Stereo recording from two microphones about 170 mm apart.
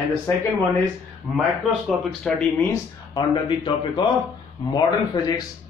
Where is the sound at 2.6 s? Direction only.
20° left (ahead or behind).